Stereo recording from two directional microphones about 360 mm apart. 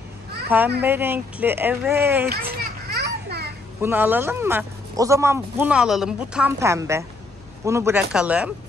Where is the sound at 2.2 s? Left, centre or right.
Right.